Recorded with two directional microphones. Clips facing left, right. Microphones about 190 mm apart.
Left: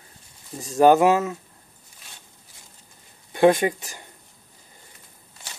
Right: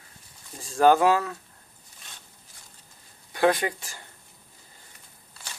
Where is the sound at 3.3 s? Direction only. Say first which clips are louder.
Left 6 dB; 20° left (ahead or behind).